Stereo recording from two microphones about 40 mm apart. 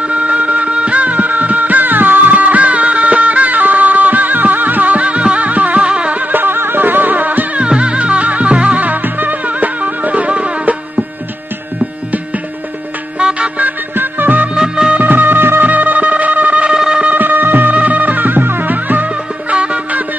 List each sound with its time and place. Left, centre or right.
0.0 s music: right
5.8 s music: right
6.3 s music: right
7.6 s music: right
13.2 s music: right
13.6 s music: right
14.5 s music: centre
15.0 s music: right
15.6 s music: right
16.7 s a sound: centre
17.2 s music: right
17.7 s music: right
19.5 s music: right